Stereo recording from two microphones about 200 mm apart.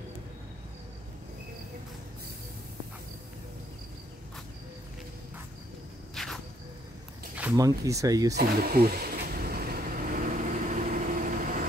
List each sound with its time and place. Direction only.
6.1 s cricket: centre (ahead or behind)
7.5 s speech: 15° right (ahead or behind)
8.4 s vehicle: 50° right (ahead or behind)